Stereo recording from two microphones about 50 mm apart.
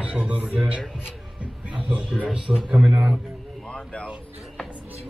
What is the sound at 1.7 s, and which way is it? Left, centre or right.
Music, centre.